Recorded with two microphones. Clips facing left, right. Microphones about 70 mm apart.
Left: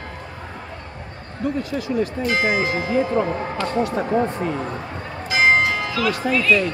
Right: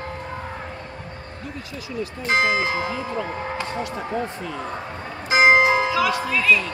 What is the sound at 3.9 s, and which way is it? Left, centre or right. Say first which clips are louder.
Speech: left 6 dB; left.